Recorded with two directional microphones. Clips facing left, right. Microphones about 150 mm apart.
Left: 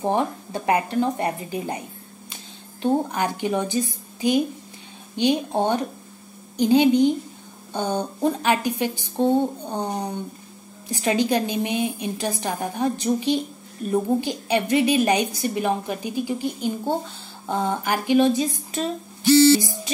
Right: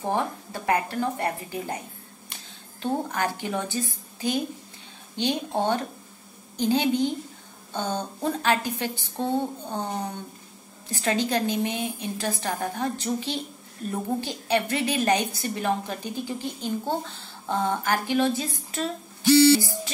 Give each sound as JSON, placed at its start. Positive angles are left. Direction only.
{"t": 0.0, "sound": "speech", "side_deg": 20}
{"t": 2.8, "sound": "a woman's voice", "side_deg": 15}